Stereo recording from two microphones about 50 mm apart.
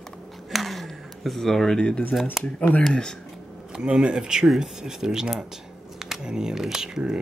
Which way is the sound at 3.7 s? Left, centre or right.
Centre.